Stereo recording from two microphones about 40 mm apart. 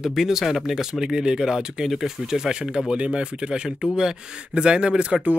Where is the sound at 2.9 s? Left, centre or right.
Right.